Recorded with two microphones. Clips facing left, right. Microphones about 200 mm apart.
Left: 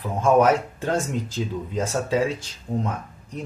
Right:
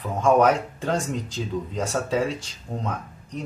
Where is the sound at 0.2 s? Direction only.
5° left (ahead or behind).